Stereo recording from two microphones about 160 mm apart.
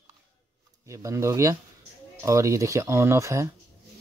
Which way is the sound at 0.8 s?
20° right (ahead or behind).